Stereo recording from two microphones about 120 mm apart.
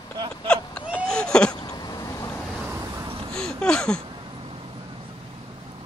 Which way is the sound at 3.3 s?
5° left (ahead or behind).